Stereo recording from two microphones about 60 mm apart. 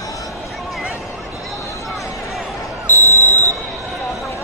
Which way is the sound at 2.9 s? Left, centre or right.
Left.